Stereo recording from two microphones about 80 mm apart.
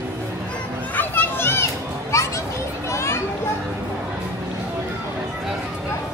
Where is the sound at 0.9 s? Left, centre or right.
Left.